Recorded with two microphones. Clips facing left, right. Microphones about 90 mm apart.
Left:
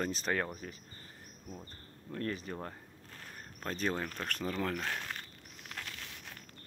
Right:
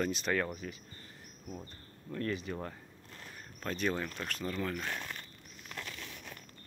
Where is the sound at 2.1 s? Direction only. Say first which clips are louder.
Right 2 dB; 40° left (ahead or behind).